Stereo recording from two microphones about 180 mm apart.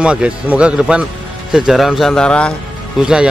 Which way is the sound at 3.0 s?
5° right (ahead or behind).